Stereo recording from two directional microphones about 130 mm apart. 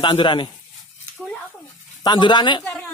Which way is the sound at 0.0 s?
35° left (ahead or behind).